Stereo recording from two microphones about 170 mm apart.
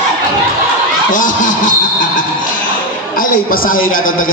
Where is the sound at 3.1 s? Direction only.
55° left (ahead or behind).